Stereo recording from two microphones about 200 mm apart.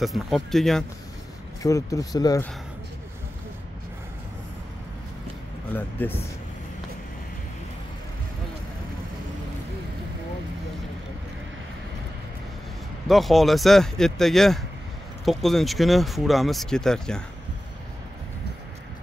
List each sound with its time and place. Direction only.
0.0 s speech: centre (ahead or behind)
1.6 s speech: 15° left (ahead or behind)
5.8 s speech: 10° left (ahead or behind)
13.1 s speech: centre (ahead or behind)